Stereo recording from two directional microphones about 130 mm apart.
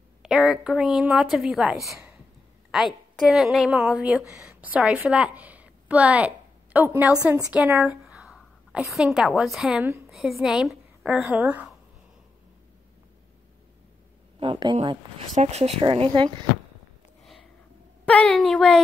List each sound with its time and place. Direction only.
0.2 s a woman's voice: 5° right (ahead or behind)
14.4 s speech: 35° right (ahead or behind)
15.3 s speech: 55° right (ahead or behind)
18.0 s a woman's voice: 10° left (ahead or behind)